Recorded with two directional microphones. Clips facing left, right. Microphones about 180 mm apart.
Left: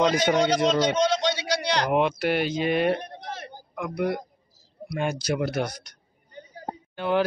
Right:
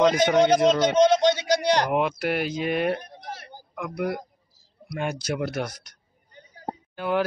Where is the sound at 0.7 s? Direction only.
50° right (ahead or behind).